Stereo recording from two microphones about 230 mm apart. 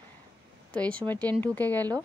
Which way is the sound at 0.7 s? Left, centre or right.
Centre.